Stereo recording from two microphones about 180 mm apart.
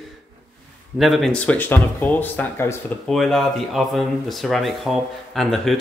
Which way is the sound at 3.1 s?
Centre (ahead or behind).